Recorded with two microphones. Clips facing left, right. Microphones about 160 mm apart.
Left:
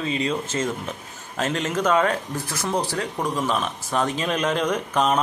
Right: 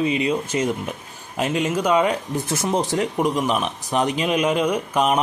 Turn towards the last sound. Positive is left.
turn(degrees=-10)  # may be behind; listen again after turning